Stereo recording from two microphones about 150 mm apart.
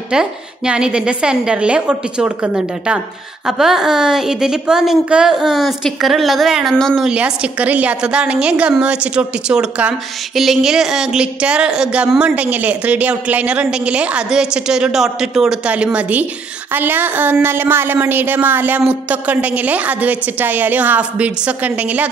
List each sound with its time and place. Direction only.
0.1 s a woman's voice: 5° right (ahead or behind)